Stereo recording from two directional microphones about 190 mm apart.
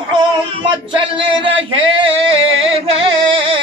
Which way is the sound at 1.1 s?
25° right (ahead or behind).